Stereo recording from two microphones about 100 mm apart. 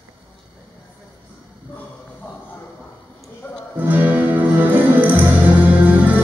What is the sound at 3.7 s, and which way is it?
Music, 20° right (ahead or behind).